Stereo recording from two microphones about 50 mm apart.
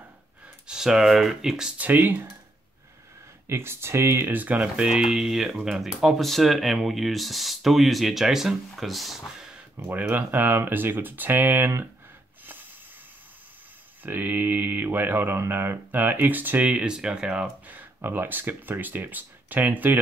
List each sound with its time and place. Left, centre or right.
0.7 s speech: centre
1.8 s speech: right
3.4 s speech: right
4.3 s speech: right
4.6 s speech: right
5.1 s speech: centre
9.9 s speech: right
14.0 s speech: right
16.8 s speech: centre
18.0 s speech: right